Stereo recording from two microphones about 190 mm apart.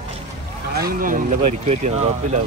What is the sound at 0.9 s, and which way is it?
Speech, 45° right (ahead or behind).